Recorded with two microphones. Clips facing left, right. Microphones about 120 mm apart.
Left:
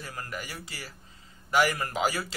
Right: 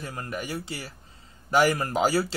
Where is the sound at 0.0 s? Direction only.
25° right (ahead or behind).